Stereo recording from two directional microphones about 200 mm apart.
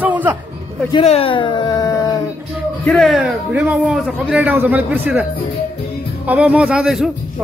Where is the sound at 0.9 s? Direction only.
30° left (ahead or behind).